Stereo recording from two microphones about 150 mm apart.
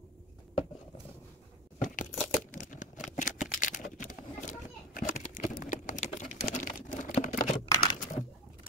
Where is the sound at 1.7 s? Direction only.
60° left (ahead or behind).